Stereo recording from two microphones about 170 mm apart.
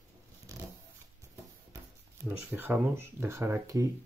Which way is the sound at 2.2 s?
10° right (ahead or behind).